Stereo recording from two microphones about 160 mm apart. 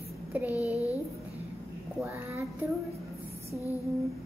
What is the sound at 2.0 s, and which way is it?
Child singing, 15° right (ahead or behind).